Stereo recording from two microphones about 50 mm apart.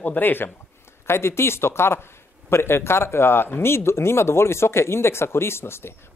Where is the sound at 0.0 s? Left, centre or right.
Left.